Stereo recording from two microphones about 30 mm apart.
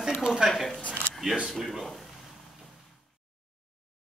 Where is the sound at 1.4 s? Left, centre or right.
Centre.